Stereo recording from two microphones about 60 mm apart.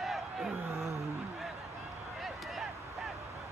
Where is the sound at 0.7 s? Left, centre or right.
Right.